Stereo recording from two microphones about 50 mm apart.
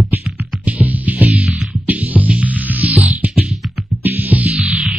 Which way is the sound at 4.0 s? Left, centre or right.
Right.